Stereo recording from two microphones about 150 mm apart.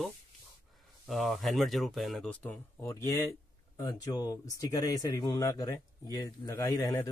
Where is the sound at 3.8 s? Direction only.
25° left (ahead or behind).